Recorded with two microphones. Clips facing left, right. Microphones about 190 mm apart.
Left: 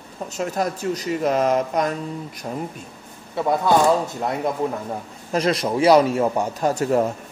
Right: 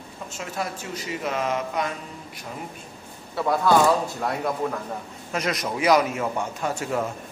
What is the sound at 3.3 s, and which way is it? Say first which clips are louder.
Speech: left 1 dB; 20° left (ahead or behind).